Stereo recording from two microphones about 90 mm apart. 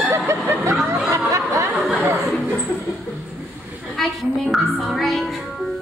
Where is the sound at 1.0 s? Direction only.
35° right (ahead or behind).